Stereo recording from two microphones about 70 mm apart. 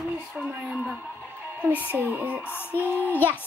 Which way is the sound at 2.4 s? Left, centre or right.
Left.